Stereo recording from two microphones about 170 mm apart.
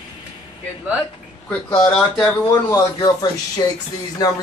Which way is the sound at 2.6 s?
25° left (ahead or behind).